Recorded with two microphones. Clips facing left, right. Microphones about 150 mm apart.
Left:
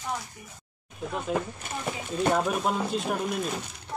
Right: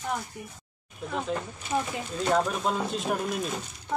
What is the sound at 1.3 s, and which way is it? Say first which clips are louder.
Speech: left 4 dB; 90° left.